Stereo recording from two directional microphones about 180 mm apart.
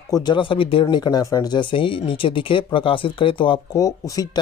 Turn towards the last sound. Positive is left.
turn(degrees=20)  # may be behind; listen again after turning